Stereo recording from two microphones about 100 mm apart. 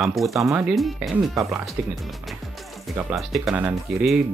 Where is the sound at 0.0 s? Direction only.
Centre (ahead or behind).